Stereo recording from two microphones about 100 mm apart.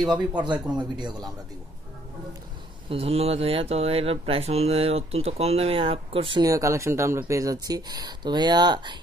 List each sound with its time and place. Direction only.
0.3 s speech: 15° right (ahead or behind)
0.7 s a man's voice: 45° right (ahead or behind)
2.9 s speech: 85° right; by 6.4 s 65° right (ahead or behind)
6.4 s speech: 30° right (ahead or behind)